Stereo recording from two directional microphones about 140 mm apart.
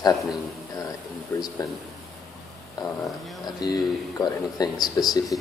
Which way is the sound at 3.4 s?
30° left (ahead or behind).